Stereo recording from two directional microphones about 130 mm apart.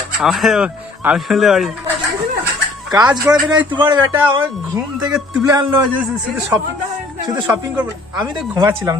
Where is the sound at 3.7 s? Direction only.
35° right (ahead or behind).